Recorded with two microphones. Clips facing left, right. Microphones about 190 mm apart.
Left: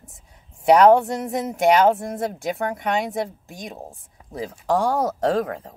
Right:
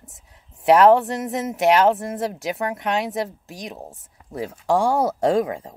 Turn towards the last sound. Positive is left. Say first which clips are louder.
# right 2 dB
turn(degrees=-10)  # may be behind; listen again after turning